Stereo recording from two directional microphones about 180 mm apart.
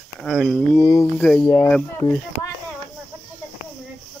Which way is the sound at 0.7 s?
20° left (ahead or behind).